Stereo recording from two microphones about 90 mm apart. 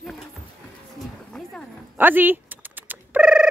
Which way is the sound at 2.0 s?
20° right (ahead or behind).